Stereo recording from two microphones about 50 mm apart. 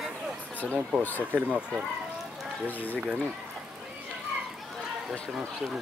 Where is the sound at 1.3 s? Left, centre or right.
Right.